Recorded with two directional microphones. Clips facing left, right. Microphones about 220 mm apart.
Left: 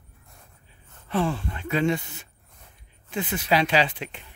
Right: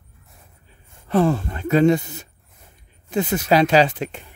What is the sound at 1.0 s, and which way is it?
Speech, 40° right (ahead or behind).